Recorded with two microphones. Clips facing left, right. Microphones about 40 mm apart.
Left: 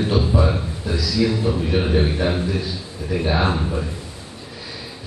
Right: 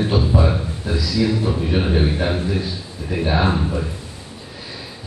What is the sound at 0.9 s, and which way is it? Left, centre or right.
Speech, right.